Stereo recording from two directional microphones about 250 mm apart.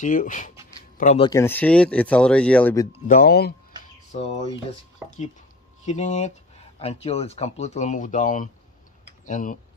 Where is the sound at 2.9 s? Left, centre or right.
Left.